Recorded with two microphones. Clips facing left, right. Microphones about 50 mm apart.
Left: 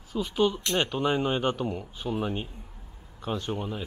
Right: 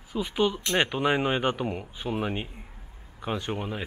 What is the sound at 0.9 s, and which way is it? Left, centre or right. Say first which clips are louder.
Speech: right 1 dB; centre.